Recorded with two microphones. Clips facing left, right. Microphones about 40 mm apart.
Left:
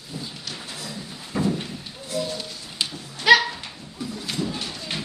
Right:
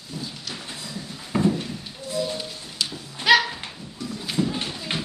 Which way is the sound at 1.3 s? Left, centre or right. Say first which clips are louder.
Right 3 dB; right.